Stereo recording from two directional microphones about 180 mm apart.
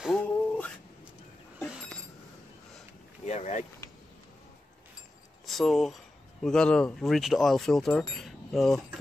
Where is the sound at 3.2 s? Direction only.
40° left (ahead or behind).